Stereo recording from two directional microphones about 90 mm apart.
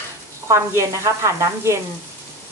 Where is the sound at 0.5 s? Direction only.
30° right (ahead or behind).